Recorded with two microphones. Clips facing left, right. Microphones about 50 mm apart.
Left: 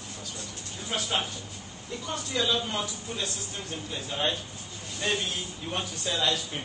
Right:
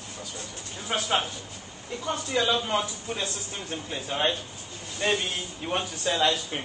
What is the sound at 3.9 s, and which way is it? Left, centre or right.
Speech, right.